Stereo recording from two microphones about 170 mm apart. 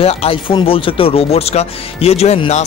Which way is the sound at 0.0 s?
35° left (ahead or behind).